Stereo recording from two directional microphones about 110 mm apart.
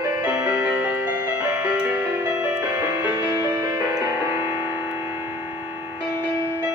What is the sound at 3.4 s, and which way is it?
Music, 30° right (ahead or behind).